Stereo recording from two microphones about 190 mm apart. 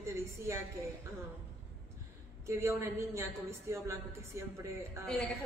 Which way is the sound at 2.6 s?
15° right (ahead or behind).